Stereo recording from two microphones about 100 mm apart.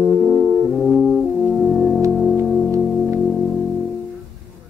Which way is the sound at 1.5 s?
Centre (ahead or behind).